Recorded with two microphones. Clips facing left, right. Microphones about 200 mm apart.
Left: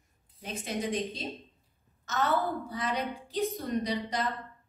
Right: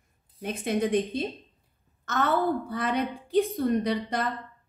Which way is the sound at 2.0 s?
55° right (ahead or behind).